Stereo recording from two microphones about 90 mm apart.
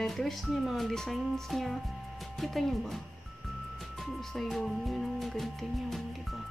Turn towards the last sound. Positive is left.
turn(degrees=0)  # may be behind; listen again after turning